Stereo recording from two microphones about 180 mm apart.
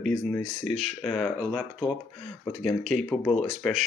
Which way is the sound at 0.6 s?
40° right (ahead or behind).